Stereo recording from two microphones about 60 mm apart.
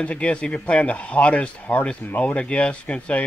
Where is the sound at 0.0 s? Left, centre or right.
Left.